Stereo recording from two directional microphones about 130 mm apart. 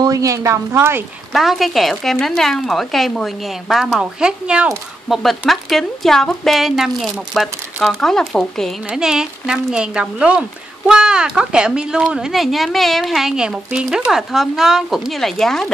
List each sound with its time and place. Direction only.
0.0 s speech: 25° right (ahead or behind)
1.3 s speech: centre (ahead or behind)